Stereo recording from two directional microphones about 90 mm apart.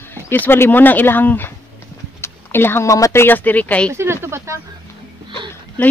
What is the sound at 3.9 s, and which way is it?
Speech, 30° right (ahead or behind).